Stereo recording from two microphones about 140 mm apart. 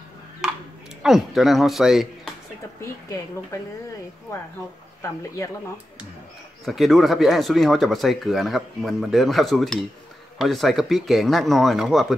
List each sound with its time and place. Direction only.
0.4 s a sound: 5° right (ahead or behind)
1.0 s speech: centre (ahead or behind)
3.5 s speech: 25° left (ahead or behind)
6.6 s speech: centre (ahead or behind)